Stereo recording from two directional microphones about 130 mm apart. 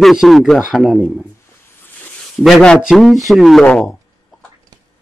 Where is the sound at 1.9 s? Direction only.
10° left (ahead or behind).